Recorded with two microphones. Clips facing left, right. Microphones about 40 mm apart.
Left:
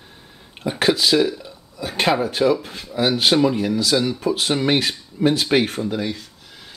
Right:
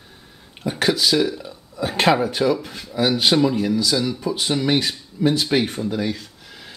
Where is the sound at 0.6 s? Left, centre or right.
Left.